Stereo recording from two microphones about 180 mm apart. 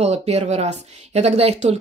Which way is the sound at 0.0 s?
35° right (ahead or behind).